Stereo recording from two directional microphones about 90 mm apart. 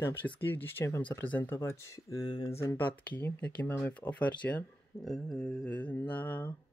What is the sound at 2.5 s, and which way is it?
Speech, 35° left (ahead or behind).